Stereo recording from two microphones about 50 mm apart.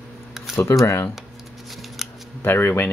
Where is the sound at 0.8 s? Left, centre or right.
Left.